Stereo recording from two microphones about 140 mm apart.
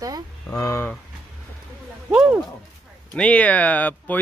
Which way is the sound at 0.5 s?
20° left (ahead or behind).